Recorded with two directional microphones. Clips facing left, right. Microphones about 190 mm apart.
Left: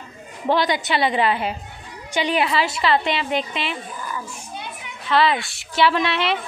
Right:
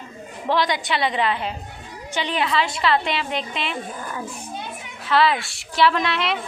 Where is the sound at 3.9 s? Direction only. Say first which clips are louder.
Left 1 dB; 55° right (ahead or behind).